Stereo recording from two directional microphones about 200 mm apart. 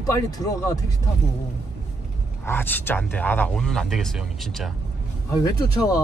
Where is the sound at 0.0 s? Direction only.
15° left (ahead or behind).